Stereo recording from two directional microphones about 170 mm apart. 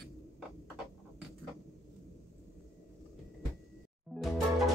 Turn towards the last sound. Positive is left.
turn(degrees=0)  # may be behind; listen again after turning